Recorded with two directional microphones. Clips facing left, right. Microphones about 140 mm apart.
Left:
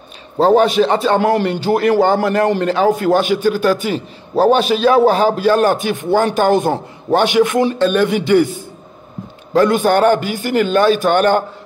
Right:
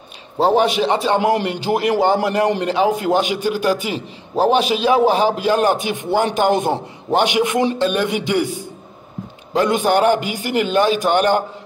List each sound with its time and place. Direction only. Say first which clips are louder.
0.4 s a man's voice: left 4 dB; 10° right (ahead or behind)
0.9 s a man's voice: left 3 dB; 50° left (ahead or behind)
1.2 s a man's voice: left 3 dB; 20° right (ahead or behind)
9.5 s a man's voice: left 4 dB; 15° right (ahead or behind)